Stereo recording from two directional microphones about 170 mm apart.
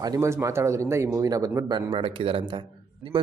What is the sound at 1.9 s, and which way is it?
Speech, 35° right (ahead or behind).